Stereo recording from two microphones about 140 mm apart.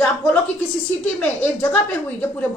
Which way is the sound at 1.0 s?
10° left (ahead or behind).